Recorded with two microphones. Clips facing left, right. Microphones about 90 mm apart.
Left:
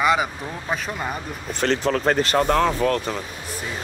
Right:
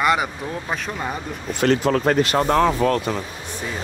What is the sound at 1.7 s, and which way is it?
Speech, 40° right (ahead or behind).